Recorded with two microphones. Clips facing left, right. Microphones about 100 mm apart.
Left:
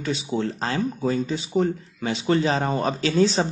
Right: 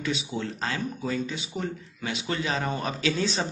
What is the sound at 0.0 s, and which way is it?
Speech, 35° left (ahead or behind).